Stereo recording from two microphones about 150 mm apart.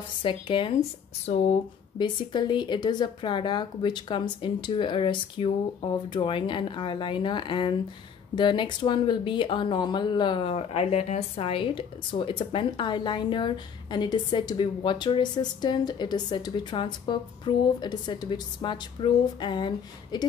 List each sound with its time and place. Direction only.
0.2 s speech: 35° left (ahead or behind)
1.2 s speech: 45° left (ahead or behind)
2.0 s speech: 30° left (ahead or behind)